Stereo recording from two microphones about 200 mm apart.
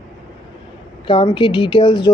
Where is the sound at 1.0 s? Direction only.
25° left (ahead or behind).